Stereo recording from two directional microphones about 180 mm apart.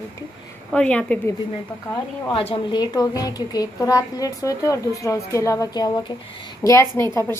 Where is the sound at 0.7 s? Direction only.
5° left (ahead or behind).